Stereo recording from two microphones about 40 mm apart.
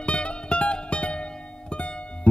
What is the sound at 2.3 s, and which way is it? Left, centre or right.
Music, left.